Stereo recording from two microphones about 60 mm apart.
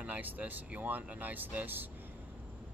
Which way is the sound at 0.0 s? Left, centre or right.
Right.